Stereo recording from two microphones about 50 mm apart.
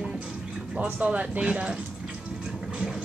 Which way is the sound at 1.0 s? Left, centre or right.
Right.